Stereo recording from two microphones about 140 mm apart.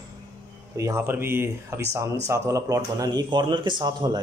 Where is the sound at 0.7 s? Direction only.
20° right (ahead or behind).